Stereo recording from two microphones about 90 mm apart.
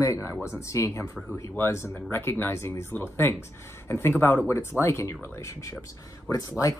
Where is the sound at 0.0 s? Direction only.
35° left (ahead or behind).